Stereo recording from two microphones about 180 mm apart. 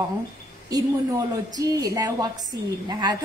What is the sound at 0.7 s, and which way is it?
A woman's voice, 20° right (ahead or behind).